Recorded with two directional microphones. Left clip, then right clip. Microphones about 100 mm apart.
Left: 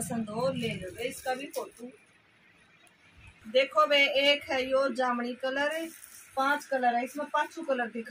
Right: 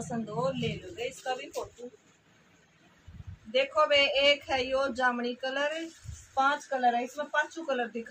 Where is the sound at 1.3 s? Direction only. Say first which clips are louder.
Left 1 dB; centre (ahead or behind).